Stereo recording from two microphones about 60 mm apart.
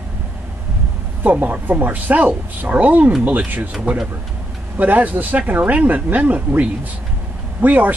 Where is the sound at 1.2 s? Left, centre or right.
Right.